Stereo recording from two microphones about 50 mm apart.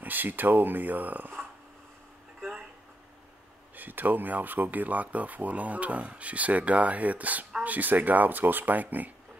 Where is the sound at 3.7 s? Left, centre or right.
Right.